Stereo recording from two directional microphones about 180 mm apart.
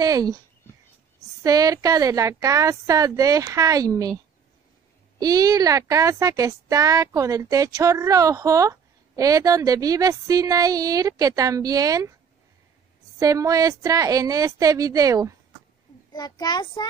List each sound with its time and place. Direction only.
0.0 s speech: 20° right (ahead or behind)
1.4 s speech: 20° right (ahead or behind)
5.2 s speech: 20° right (ahead or behind)
13.2 s speech: 20° right (ahead or behind)
16.1 s a child's voice: 20° left (ahead or behind)